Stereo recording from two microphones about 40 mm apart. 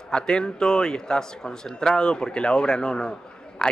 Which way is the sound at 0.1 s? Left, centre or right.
Left.